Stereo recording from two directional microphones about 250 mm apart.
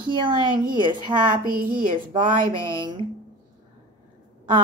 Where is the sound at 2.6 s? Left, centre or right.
Centre.